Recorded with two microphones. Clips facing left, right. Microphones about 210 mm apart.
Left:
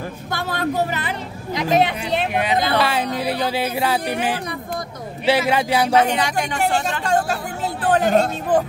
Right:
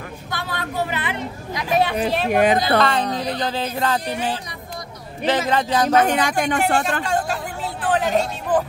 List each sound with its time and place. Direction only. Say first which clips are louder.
0.3 s a sound: left 6 dB; 45° left (ahead or behind)
1.5 s speech: left 3 dB; 25° left (ahead or behind)
2.3 s speech: right 6 dB; 45° right (ahead or behind)
2.8 s a woman's voice: even; 10° left (ahead or behind)
5.2 s a woman's voice: left 2 dB; 10° left (ahead or behind)
5.9 s speech: right 1 dB; 50° right (ahead or behind)
7.0 s speech: left 2 dB; 45° left (ahead or behind)